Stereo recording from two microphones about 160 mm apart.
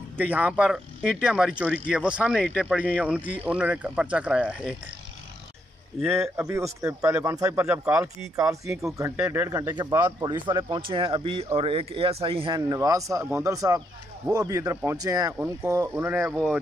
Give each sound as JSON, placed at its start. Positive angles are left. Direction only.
{"t": 0.3, "sound": "speech", "side_deg": -10}
{"t": 2.3, "sound": "speech", "side_deg": 5}
{"t": 3.4, "sound": "speech", "side_deg": -5}
{"t": 6.3, "sound": "speech", "side_deg": -15}
{"t": 9.5, "sound": "a man's voice", "side_deg": -25}